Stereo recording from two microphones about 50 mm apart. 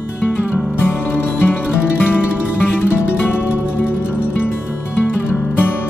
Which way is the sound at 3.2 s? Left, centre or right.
Left.